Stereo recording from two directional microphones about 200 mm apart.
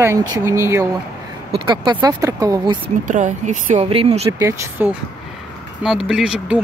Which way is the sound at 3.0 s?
40° right (ahead or behind).